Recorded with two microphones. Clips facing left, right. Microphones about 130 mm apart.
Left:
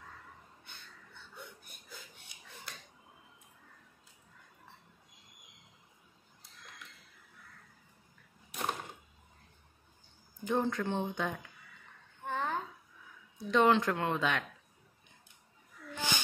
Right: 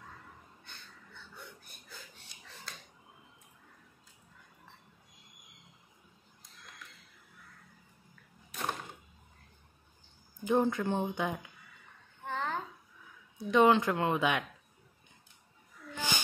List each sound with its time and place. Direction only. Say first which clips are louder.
10.4 s speech: right 3 dB; 5° right (ahead or behind)
12.3 s a sound: left 1 dB; 15° left (ahead or behind)
13.4 s speech: right 2 dB; 5° right (ahead or behind)
15.9 s wheeze: even; centre (ahead or behind)